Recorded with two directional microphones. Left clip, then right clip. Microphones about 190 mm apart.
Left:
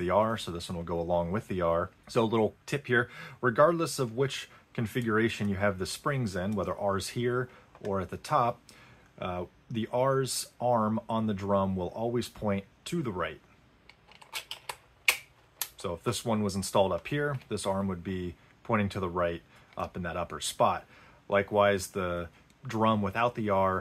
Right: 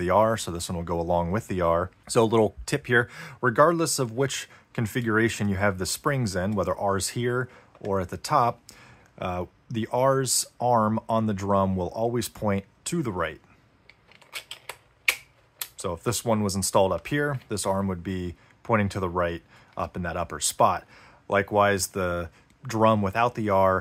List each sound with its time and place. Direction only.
0.0 s speech: 35° right (ahead or behind)
13.8 s camera: 5° left (ahead or behind)
15.7 s speech: 35° right (ahead or behind)